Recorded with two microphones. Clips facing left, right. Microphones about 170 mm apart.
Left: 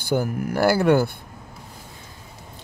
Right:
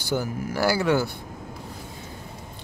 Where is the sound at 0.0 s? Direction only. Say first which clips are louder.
Left 4 dB; 55° left (ahead or behind).